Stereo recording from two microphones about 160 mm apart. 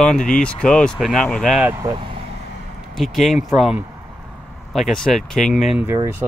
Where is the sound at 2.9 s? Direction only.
Centre (ahead or behind).